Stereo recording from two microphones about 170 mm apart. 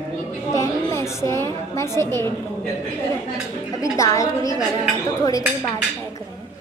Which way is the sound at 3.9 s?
20° left (ahead or behind).